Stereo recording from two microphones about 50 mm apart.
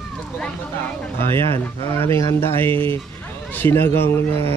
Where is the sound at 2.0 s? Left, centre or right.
Left.